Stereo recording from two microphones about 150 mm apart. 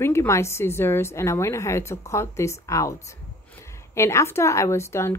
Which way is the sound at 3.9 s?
20° left (ahead or behind).